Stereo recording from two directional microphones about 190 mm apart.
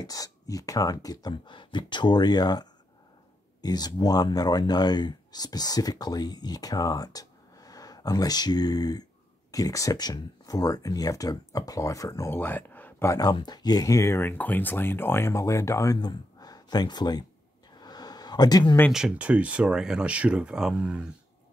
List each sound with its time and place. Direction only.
0.0 s speech: 20° left (ahead or behind)
17.7 s a sound: 20° left (ahead or behind)
18.9 s speech: centre (ahead or behind)